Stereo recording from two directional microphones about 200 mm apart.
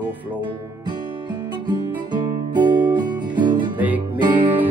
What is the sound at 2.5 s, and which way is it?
Music, 20° right (ahead or behind).